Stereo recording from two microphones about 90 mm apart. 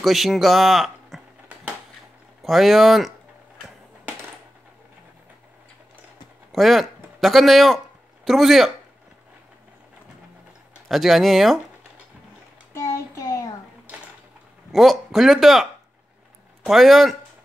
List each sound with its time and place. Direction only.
0.0 s speech: centre (ahead or behind)
2.4 s a man's voice: centre (ahead or behind)
6.5 s a man's voice: centre (ahead or behind)
10.9 s a man's voice: centre (ahead or behind)
12.7 s child singing: 35° left (ahead or behind)
14.7 s a man's voice: centre (ahead or behind)